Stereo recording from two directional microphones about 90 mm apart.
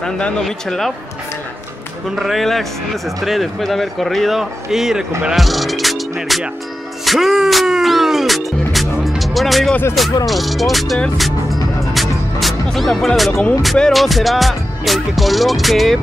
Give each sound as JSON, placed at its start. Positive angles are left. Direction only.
{"t": 0.0, "sound": "speech", "side_deg": 5}
{"t": 2.1, "sound": "speech", "side_deg": 0}
{"t": 7.1, "sound": "music", "side_deg": 0}
{"t": 10.2, "sound": "speech", "side_deg": 0}
{"t": 11.1, "sound": "music", "side_deg": 0}
{"t": 13.6, "sound": "speech", "side_deg": 5}